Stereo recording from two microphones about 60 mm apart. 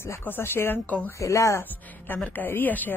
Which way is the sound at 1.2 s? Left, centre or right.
Left.